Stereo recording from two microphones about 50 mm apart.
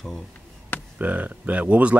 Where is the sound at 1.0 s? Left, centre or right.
Right.